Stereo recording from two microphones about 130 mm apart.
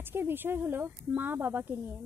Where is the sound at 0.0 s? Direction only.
15° right (ahead or behind).